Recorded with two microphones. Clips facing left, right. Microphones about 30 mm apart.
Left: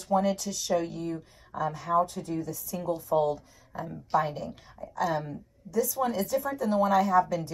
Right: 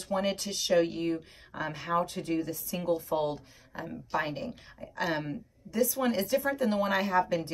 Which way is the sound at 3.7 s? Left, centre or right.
Right.